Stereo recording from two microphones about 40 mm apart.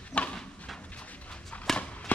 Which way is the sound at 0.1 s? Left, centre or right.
Left.